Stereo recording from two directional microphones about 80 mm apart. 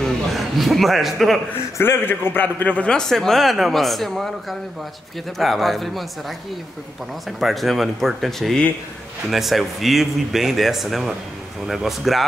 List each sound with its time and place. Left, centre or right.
0.0 s a man's voice: centre
1.8 s a man's voice: left; by 6.0 s centre
7.2 s a man's voice: centre